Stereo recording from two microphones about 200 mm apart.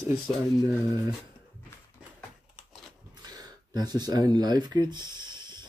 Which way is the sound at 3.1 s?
20° right (ahead or behind).